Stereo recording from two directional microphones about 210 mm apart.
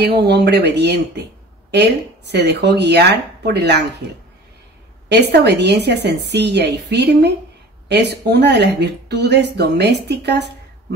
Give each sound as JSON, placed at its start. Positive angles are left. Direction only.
{"t": 0.0, "sound": "a woman's voice", "side_deg": -50}
{"t": 5.1, "sound": "a woman's voice", "side_deg": -55}